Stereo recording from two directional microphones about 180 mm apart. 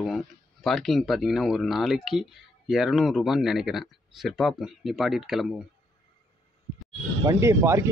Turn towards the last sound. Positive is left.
turn(degrees=-15)  # may be behind; listen again after turning